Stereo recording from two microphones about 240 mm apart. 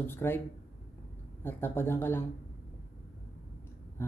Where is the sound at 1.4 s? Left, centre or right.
Centre.